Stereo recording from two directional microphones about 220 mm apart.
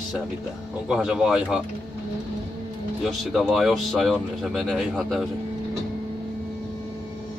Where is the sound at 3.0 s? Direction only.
Centre (ahead or behind).